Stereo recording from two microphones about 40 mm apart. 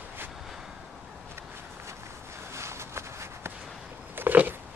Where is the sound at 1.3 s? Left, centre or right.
Right.